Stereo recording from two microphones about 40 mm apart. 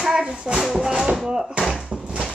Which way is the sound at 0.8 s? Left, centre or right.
Centre.